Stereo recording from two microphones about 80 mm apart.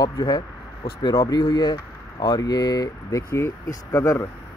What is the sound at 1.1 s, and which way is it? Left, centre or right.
Speech, left.